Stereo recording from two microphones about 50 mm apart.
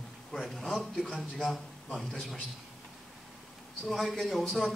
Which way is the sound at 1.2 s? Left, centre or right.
Centre.